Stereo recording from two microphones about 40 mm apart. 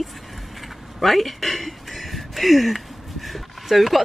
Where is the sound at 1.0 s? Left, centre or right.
Centre.